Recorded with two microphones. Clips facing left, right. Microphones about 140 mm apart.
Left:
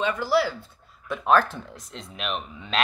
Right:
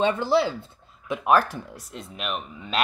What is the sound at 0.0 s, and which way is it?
Speech, 25° right (ahead or behind).